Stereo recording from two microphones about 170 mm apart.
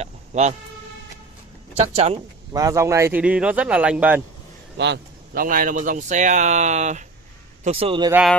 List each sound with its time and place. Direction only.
0.0 s a sound: 40° right (ahead or behind)
2.5 s speech: 20° right (ahead or behind)
4.7 s speech: 90° right; by 7.1 s 45° right (ahead or behind)
7.6 s a man's voice: 35° right (ahead or behind)
8.1 s speech: 5° right (ahead or behind)